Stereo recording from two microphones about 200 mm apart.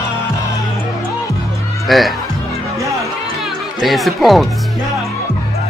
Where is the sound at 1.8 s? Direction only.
Centre (ahead or behind).